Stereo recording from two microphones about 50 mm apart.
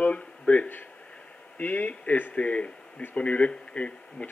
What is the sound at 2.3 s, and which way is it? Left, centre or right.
Speech, left.